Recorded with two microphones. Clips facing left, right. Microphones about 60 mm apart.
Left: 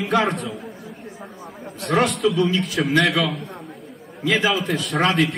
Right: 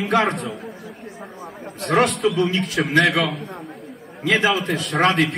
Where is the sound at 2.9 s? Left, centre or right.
Right.